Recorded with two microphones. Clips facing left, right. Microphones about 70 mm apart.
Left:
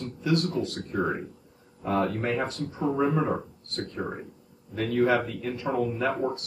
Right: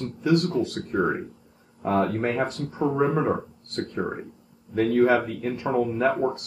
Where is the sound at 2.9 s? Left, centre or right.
Right.